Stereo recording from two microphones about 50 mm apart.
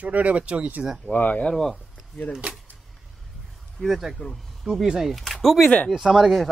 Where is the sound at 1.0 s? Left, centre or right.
Left.